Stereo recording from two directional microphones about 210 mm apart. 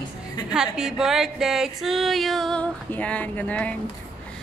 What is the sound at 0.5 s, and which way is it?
Female singing, 5° right (ahead or behind).